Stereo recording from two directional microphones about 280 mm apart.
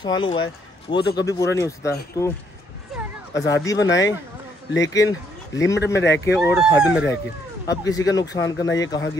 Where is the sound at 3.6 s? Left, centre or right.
Centre.